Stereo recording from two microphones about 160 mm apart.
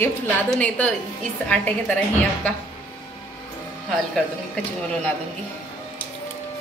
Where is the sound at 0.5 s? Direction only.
10° left (ahead or behind).